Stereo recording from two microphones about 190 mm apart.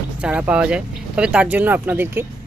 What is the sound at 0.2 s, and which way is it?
Speech, 5° right (ahead or behind).